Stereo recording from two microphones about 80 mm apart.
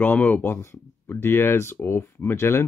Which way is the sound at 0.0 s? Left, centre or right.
Left.